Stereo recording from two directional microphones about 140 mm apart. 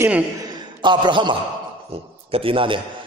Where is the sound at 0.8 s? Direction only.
35° right (ahead or behind).